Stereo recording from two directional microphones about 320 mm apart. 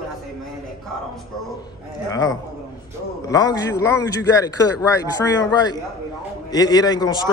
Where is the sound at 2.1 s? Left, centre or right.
Centre.